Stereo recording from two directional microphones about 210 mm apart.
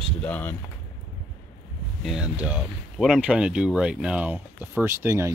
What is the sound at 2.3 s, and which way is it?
Speech, 5° right (ahead or behind).